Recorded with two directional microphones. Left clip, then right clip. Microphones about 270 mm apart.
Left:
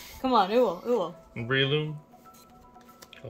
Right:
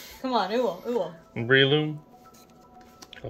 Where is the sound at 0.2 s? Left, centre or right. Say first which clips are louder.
Left 3 dB; left.